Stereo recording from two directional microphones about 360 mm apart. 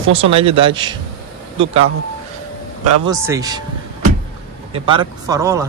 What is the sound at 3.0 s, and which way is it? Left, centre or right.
Speech, centre.